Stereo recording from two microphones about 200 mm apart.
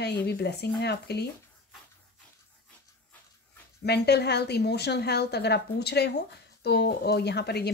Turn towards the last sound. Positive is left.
turn(degrees=55)  # may be behind; listen again after turning